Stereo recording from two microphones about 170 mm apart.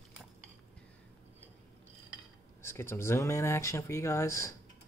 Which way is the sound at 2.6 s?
15° left (ahead or behind).